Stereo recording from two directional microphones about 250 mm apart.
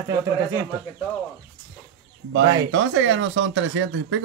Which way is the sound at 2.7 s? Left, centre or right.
Right.